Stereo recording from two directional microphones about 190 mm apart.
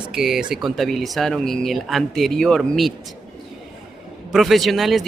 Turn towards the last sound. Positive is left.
turn(degrees=0)  # may be behind; listen again after turning